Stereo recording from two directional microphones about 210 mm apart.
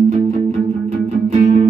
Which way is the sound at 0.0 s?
35° right (ahead or behind).